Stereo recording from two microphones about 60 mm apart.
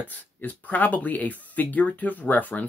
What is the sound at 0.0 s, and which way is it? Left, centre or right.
Speech, left.